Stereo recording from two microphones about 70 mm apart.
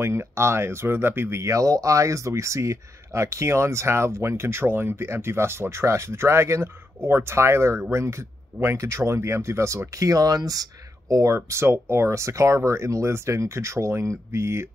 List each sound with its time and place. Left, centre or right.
0.0 s speech: right
11.6 s speech: right